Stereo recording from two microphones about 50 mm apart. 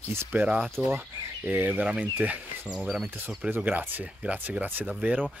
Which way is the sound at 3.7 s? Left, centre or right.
Right.